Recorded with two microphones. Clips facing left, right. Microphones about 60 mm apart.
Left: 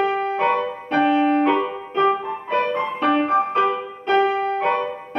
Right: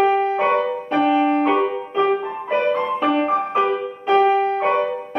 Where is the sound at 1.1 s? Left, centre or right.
Centre.